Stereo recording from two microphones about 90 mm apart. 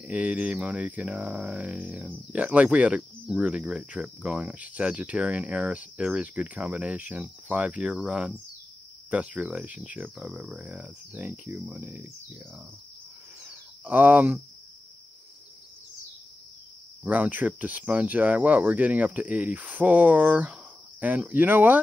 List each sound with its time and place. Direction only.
0.0 s speech: 15° right (ahead or behind)
13.4 s a sound: 20° right (ahead or behind)
17.0 s speech: 15° right (ahead or behind)